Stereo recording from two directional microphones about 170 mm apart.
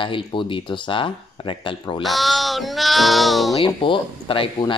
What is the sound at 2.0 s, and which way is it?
Speech, centre (ahead or behind).